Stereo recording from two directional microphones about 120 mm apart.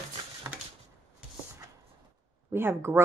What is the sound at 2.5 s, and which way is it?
Speech, 20° right (ahead or behind).